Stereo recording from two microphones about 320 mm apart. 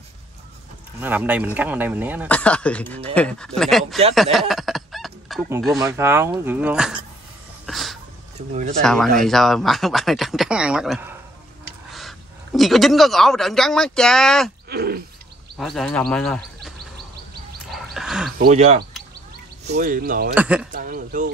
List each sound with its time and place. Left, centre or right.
1.0 s speech: centre
7.6 s a sound: centre
8.8 s speech: centre
14.7 s gargling: right
15.5 s speech: centre
17.6 s a sound: centre
18.4 s speech: right
20.3 s speech: centre
20.7 s speech: right